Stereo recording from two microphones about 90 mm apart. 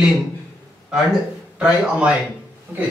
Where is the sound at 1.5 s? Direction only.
10° right (ahead or behind).